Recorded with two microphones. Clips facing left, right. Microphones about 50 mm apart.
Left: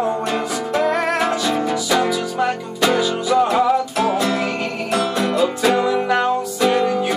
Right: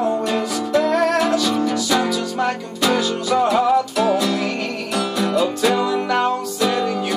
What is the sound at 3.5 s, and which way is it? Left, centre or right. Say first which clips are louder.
Music: even; left.